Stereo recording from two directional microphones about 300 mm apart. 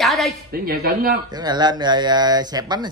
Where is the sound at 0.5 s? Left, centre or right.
Right.